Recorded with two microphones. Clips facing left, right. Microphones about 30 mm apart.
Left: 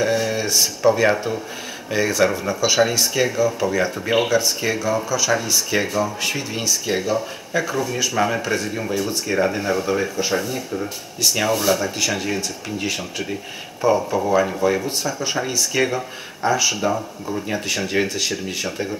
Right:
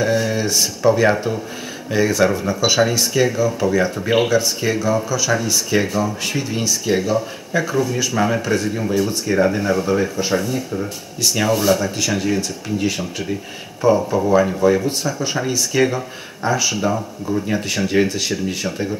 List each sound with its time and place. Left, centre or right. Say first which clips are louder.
0.0 s speech: right 2 dB; centre